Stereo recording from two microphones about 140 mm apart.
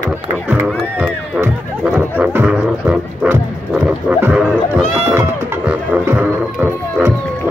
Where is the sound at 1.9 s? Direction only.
10° right (ahead or behind).